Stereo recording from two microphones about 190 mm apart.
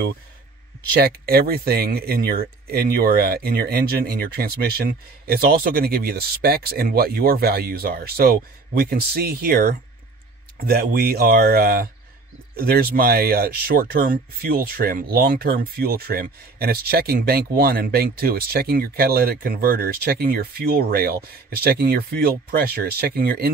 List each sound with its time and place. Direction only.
1.0 s speech: 55° right (ahead or behind)